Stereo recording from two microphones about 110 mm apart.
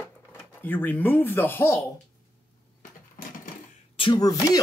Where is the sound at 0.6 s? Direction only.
20° left (ahead or behind).